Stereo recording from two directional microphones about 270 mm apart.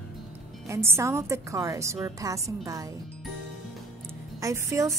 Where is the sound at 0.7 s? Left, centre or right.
Centre.